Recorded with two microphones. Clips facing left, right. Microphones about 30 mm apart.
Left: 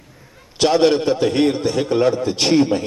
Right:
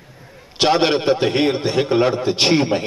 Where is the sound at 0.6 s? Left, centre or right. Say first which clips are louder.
Left 1 dB; right.